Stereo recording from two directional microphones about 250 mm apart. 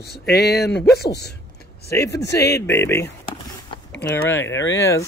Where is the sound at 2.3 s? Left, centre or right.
Centre.